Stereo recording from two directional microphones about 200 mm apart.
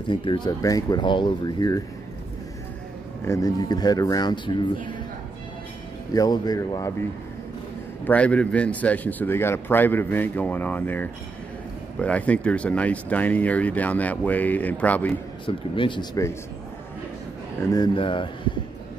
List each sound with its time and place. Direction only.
0.1 s speech: 25° left (ahead or behind)
3.3 s speech: 20° left (ahead or behind)
6.1 s speech: 20° left (ahead or behind)
15.4 s speech: 25° left (ahead or behind)
17.6 s speech: 20° left (ahead or behind)